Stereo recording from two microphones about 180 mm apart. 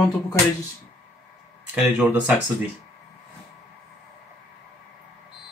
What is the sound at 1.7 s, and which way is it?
Speech, 5° right (ahead or behind).